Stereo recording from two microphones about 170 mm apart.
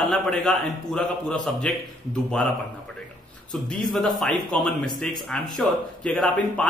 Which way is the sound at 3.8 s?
Centre (ahead or behind).